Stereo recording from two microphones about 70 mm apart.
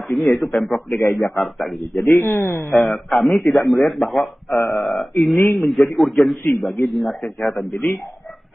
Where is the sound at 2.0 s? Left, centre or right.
Left.